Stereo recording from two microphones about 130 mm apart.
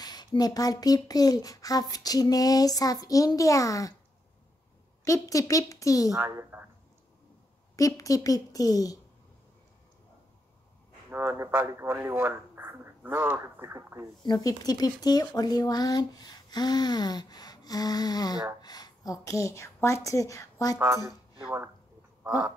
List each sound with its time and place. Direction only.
0.0 s speech: 30° left (ahead or behind)
5.0 s speech: 25° left (ahead or behind)
6.0 s a woman's voice: 20° right (ahead or behind)
7.7 s speech: 25° left (ahead or behind)
11.1 s speech: 15° right (ahead or behind)
14.2 s a woman's voice: 30° left (ahead or behind)
20.8 s a woman's voice: 25° right (ahead or behind)